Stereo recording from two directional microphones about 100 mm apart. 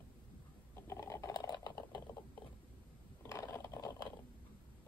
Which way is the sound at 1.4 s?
45° left (ahead or behind).